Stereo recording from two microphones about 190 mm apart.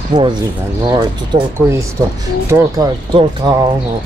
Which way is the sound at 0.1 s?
20° right (ahead or behind).